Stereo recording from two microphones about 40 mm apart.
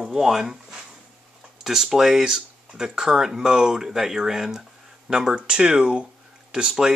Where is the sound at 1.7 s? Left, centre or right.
Centre.